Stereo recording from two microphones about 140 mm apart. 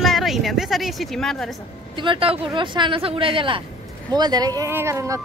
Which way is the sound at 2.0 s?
40° right (ahead or behind).